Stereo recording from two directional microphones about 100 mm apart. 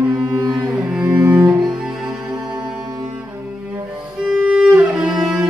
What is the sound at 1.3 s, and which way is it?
Cello, 10° right (ahead or behind).